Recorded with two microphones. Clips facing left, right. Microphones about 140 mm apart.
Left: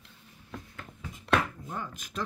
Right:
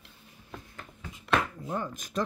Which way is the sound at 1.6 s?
45° right (ahead or behind).